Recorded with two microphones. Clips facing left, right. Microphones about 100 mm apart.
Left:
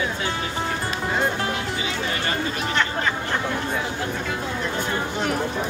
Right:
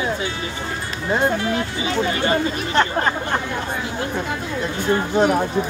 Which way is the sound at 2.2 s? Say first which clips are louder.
Right 5 dB; 35° right (ahead or behind).